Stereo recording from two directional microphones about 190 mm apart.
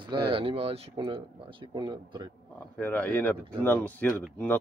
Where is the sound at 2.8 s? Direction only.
10° left (ahead or behind).